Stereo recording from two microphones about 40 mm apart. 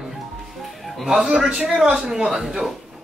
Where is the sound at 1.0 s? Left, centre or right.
Centre.